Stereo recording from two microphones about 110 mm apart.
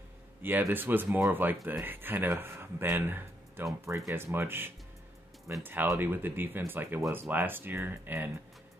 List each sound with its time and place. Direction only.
0.4 s speech: 20° right (ahead or behind)